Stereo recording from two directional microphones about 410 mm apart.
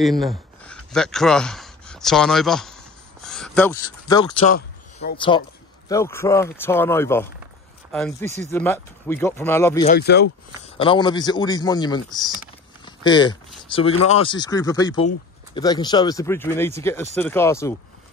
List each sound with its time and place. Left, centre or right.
0.0 s a sound: centre
5.9 s speech: centre
9.8 s speech: left
10.8 s speech: centre